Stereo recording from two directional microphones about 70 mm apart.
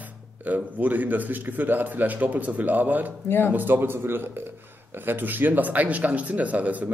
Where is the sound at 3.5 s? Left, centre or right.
Right.